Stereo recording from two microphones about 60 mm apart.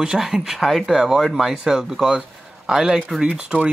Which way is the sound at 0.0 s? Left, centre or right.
Centre.